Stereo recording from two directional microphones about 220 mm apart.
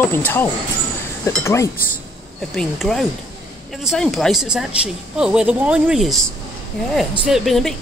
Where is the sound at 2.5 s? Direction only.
Centre (ahead or behind).